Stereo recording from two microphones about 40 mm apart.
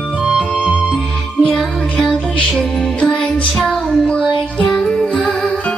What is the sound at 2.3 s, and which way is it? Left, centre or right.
Music, left.